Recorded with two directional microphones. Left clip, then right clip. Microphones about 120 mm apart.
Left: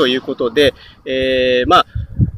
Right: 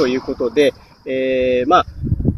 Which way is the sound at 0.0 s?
15° left (ahead or behind).